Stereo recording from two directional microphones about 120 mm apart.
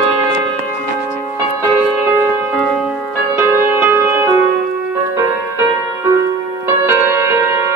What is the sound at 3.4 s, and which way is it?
Music, 20° right (ahead or behind).